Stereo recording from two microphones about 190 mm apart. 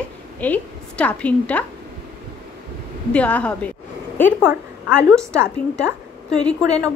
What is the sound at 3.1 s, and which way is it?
Speech, 5° left (ahead or behind).